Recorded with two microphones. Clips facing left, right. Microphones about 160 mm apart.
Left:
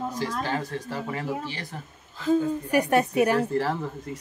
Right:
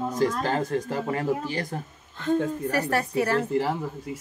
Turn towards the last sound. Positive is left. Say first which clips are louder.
# right 1 dB
turn(degrees=-10)  # may be behind; listen again after turning